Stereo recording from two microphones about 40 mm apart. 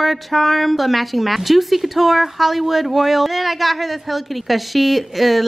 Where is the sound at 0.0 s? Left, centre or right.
Centre.